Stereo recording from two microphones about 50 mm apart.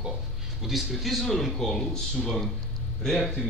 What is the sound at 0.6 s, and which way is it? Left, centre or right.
A man's voice, centre.